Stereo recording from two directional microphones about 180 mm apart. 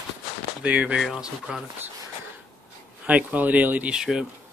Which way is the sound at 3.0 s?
10° right (ahead or behind).